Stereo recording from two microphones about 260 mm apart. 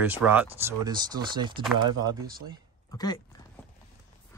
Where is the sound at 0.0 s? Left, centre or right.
Centre.